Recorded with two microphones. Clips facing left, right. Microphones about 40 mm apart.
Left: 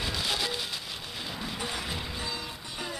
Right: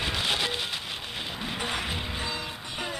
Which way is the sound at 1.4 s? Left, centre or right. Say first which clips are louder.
Right 4 dB; right.